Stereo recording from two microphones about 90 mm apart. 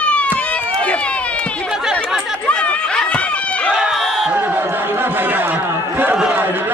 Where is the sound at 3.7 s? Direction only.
5° right (ahead or behind).